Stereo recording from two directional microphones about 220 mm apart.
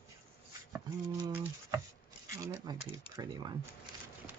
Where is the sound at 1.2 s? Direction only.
10° right (ahead or behind).